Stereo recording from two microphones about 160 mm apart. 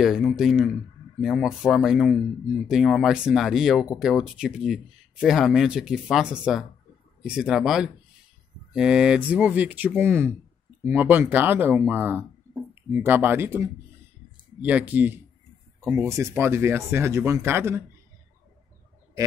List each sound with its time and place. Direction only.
0.0 s speech: centre (ahead or behind); by 17.8 s 15° right (ahead or behind)